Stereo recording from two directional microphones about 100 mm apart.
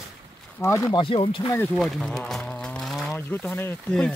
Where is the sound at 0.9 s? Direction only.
60° left (ahead or behind).